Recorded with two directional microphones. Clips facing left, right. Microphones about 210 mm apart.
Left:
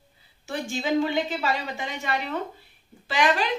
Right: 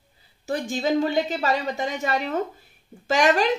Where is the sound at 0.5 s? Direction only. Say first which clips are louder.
Right 3 dB; 40° right (ahead or behind).